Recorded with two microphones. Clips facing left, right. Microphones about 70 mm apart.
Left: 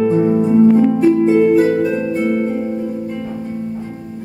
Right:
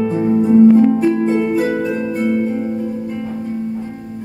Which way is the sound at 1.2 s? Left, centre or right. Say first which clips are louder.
Left 5 dB; centre.